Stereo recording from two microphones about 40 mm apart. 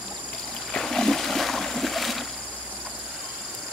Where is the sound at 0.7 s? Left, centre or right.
Centre.